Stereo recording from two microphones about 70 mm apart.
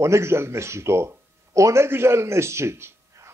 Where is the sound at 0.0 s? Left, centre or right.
Right.